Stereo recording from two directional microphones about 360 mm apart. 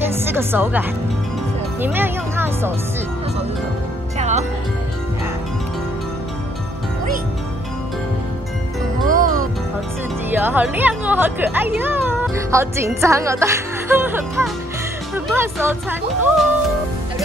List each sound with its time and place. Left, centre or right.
0.1 s music: centre
1.8 s speech: centre
4.2 s music: centre
9.0 s music: right
10.3 s speech: centre